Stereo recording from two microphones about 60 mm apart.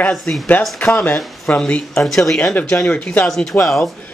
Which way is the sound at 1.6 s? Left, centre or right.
Centre.